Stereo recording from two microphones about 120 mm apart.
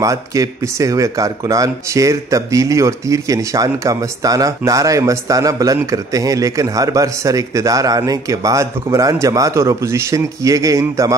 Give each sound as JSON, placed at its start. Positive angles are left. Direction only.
{"t": 0.0, "sound": "speech", "side_deg": -25}